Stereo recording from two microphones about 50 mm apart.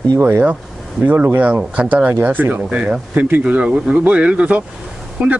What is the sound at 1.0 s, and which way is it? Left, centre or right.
Speech, right.